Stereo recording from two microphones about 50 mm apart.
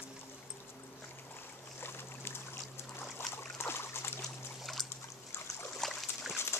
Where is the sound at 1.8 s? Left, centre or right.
Left.